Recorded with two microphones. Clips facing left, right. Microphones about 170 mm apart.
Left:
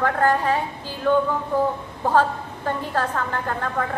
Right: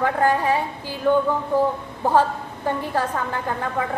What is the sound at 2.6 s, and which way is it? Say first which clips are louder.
A woman's voice: right 1 dB; 10° right (ahead or behind).